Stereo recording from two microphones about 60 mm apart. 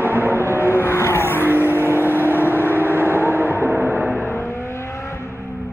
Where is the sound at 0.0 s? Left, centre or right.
Right.